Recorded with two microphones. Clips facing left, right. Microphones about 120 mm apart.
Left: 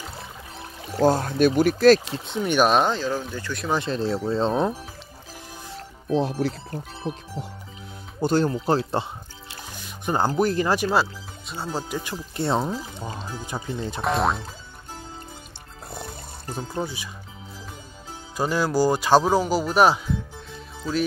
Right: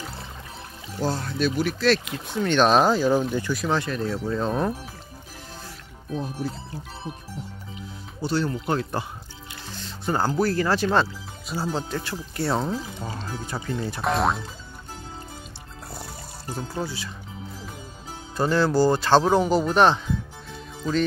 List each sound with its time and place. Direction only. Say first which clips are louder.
0.8 s speech: left 7 dB; 50° left (ahead or behind)
2.0 s speech: left 1 dB; 30° left (ahead or behind)
2.3 s speech: even; 10° left (ahead or behind)
2.7 s speech: right 3 dB; 5° right (ahead or behind)
3.7 s speech: left 5 dB; 25° left (ahead or behind)
6.0 s speech: left 7 dB; 90° left
8.2 s speech: left 4 dB; 45° left (ahead or behind)
8.6 s speech: left 3 dB; 30° left (ahead or behind)
9.7 s speech: even; 10° left (ahead or behind)
11.9 s speech: even; 15° left (ahead or behind)
14.0 s speech: even; centre (ahead or behind)
16.8 s speech: even; 15° left (ahead or behind)
18.3 s speech: right 2 dB; 10° left (ahead or behind)